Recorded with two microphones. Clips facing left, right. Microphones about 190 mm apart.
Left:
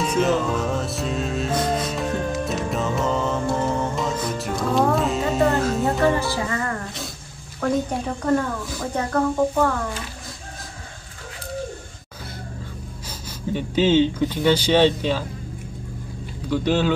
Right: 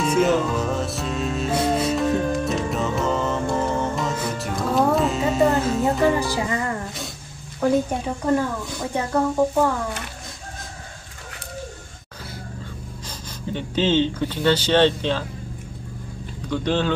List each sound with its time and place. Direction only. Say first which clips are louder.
0.0 s music: right 1 dB; centre (ahead or behind)
6.1 s music: right 1 dB; 15° right (ahead or behind)
7.9 s speech: even; centre (ahead or behind)
8.9 s speech: right 1 dB; 10° right (ahead or behind)
13.5 s speech: left 3 dB; 10° left (ahead or behind)
16.4 s speech: left 2 dB; 10° left (ahead or behind)